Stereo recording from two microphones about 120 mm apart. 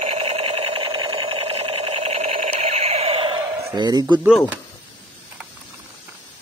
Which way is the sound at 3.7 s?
35° right (ahead or behind).